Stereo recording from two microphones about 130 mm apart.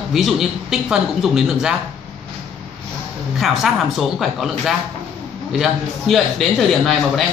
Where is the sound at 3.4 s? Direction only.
Centre (ahead or behind).